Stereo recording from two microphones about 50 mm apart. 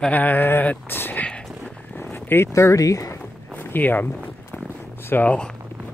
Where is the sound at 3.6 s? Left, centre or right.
Left.